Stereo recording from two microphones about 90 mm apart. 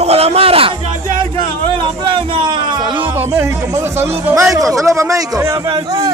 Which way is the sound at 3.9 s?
30° right (ahead or behind).